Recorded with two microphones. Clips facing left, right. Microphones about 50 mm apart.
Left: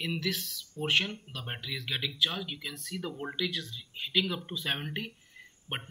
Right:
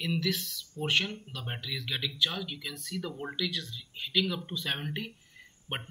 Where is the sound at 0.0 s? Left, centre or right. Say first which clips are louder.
Right 2 dB; centre.